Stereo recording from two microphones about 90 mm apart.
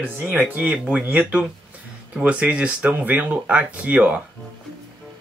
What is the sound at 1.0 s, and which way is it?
Speech, 20° right (ahead or behind).